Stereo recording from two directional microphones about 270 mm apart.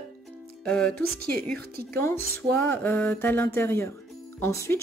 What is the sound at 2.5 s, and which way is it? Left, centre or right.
Speech, centre.